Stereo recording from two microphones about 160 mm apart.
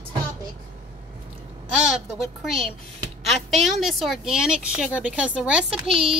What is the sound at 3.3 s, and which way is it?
A woman's voice, centre (ahead or behind).